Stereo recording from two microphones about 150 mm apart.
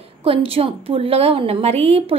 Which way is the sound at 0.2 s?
40° right (ahead or behind).